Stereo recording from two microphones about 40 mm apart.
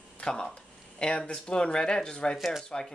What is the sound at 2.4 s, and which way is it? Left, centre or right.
Speech, centre.